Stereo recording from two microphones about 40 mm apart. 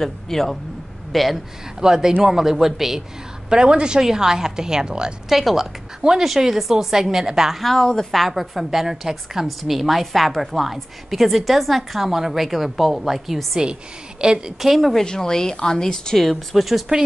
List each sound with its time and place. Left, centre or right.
0.0 s a woman's voice: centre
1.8 s speech: centre
3.4 s a woman's voice: right
5.3 s speech: centre
7.5 s a woman's voice: centre
12.2 s a woman's voice: centre
14.2 s a woman's voice: centre
14.6 s a woman's voice: centre
15.0 s speech: centre